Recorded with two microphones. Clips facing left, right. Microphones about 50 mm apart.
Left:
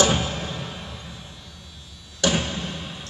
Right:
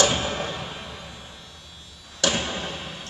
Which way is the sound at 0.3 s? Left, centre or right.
Centre.